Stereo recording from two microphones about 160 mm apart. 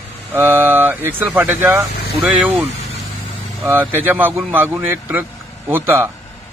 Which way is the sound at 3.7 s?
15° right (ahead or behind).